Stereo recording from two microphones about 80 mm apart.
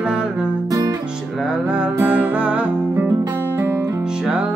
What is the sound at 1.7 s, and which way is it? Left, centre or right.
Music, centre.